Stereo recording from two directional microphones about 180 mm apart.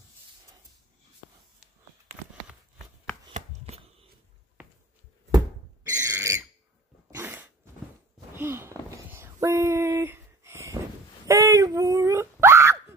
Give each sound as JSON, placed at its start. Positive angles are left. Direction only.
{"t": 3.3, "sound": "chopping", "side_deg": -35}
{"t": 5.9, "sound": "owl", "side_deg": -15}
{"t": 7.2, "sound": "cough", "side_deg": -10}
{"t": 8.4, "sound": "a sound", "side_deg": -15}
{"t": 11.2, "sound": "wail", "side_deg": -15}